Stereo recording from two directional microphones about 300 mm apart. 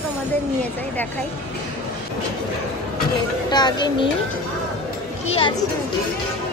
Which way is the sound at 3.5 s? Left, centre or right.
Centre.